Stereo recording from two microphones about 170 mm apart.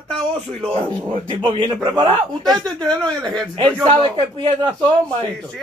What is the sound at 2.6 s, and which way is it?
Speech, 5° left (ahead or behind).